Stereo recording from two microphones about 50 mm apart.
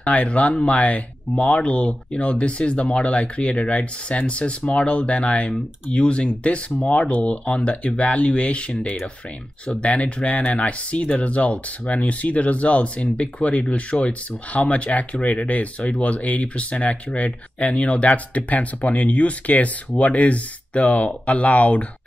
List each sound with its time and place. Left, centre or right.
0.0 s speech: left